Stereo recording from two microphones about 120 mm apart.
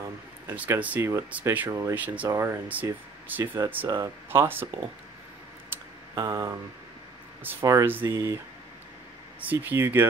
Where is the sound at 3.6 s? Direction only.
30° right (ahead or behind).